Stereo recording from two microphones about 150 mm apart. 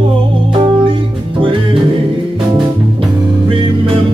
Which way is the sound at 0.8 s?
35° right (ahead or behind).